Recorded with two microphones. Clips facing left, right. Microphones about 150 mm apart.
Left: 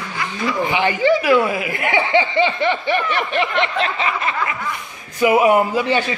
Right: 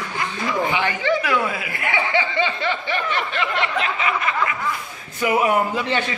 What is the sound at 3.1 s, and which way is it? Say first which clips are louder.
Snicker: left 4 dB; 20° left (ahead or behind).